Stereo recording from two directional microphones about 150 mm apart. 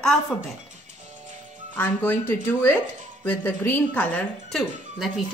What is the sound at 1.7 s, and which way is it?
A woman's voice, 10° left (ahead or behind).